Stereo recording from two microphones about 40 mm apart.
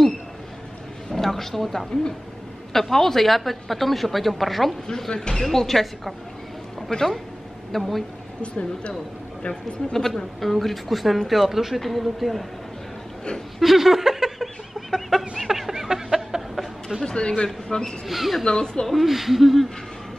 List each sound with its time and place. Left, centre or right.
1.1 s a sound: centre
2.7 s a woman's voice: centre
4.8 s a woman's voice: centre
5.4 s a woman's voice: centre
8.4 s speech: left
9.9 s a woman's voice: centre
13.6 s a sound: centre
17.0 s a woman's voice: centre
18.0 s a woman's voice: centre
18.4 s speech: centre
18.9 s a woman's voice: centre